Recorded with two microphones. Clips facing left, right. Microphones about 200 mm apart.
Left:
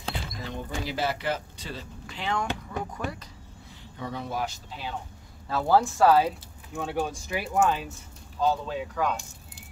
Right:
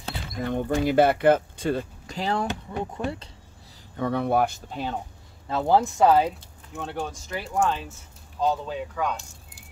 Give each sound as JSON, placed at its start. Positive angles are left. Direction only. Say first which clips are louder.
{"t": 0.4, "sound": "speech", "louder": "right 15 dB", "side_deg": -55}
{"t": 3.9, "sound": "speech", "louder": "right 10 dB", "side_deg": -60}
{"t": 5.5, "sound": "speech", "louder": "right 1 dB", "side_deg": -20}
{"t": 6.2, "sound": "speech", "louder": "right 1 dB", "side_deg": 5}